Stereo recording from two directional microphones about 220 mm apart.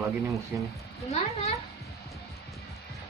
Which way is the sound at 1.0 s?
30° left (ahead or behind).